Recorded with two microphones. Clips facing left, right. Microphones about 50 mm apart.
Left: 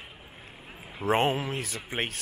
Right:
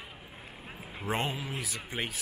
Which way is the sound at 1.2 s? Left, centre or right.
Left.